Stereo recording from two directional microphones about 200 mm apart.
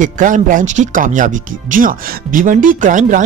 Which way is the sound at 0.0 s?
40° right (ahead or behind).